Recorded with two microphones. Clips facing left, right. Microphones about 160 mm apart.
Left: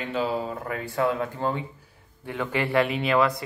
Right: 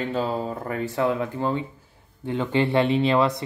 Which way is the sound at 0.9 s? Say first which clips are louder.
Even; 20° right (ahead or behind).